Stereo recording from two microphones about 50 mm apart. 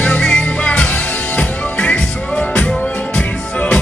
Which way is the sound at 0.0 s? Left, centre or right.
Left.